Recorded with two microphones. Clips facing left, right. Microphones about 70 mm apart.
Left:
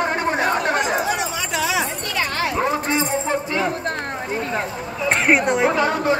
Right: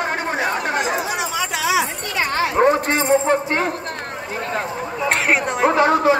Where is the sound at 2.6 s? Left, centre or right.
Right.